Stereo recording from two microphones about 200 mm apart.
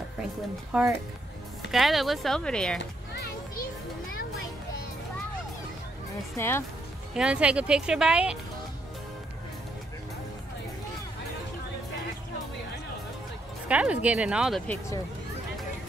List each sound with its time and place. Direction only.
0.7 s speech: 5° right (ahead or behind)
2.8 s children playing: 55° left (ahead or behind)
6.3 s speech: 10° left (ahead or behind)
7.2 s speech: 5° right (ahead or behind)
13.7 s speech: 5° right (ahead or behind)